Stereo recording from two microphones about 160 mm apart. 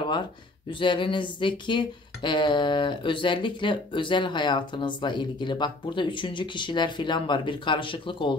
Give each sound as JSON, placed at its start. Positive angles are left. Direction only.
{"t": 0.7, "sound": "speech", "side_deg": 30}